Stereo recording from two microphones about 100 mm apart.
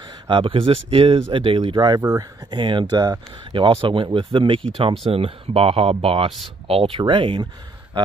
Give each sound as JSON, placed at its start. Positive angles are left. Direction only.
{"t": 0.0, "sound": "speech", "side_deg": -55}
{"t": 2.5, "sound": "speech", "side_deg": -55}
{"t": 5.1, "sound": "speech", "side_deg": -75}